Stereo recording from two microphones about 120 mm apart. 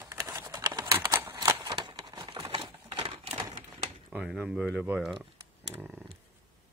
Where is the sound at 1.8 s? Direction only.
40° right (ahead or behind).